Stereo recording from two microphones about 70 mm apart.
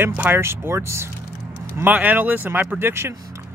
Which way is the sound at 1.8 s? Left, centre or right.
Right.